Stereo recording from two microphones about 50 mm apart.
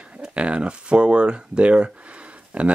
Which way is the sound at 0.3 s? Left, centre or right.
Right.